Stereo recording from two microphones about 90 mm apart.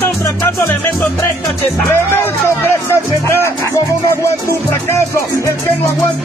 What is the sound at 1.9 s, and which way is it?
Speech, 25° left (ahead or behind).